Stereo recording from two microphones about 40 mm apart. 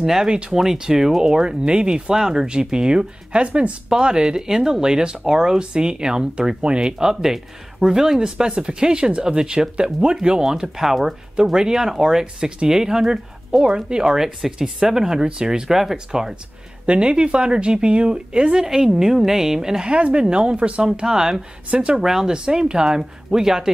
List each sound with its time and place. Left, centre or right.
0.0 s speech: centre
0.3 s speech: right
0.6 s speech: centre
2.1 s speech: centre; by 3.7 s right
3.9 s speech: centre
16.8 s speech: right
19.9 s speech: right
21.6 s speech: right
22.0 s speech: centre